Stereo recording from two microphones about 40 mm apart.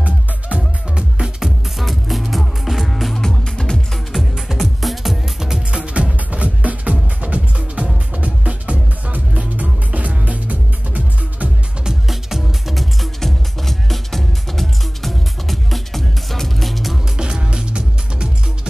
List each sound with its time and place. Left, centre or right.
0.6 s music: right
1.2 s music: centre
4.1 s music: centre
5.7 s music: right
12.1 s music: centre
17.2 s music: right